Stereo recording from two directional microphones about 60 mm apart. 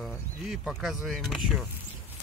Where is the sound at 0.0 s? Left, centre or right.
Centre.